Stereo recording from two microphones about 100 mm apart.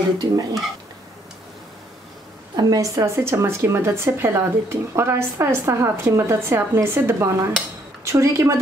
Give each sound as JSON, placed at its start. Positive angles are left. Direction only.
{"t": 0.2, "sound": "speech", "side_deg": -45}
{"t": 2.5, "sound": "a woman's voice", "side_deg": -40}